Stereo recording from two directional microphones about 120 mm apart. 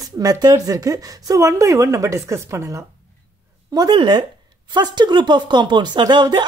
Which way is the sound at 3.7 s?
35° right (ahead or behind).